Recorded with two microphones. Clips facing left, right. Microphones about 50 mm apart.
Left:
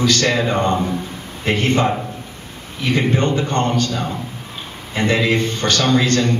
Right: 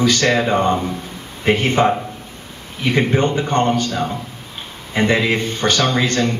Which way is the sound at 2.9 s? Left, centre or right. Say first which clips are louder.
Right 1 dB; right.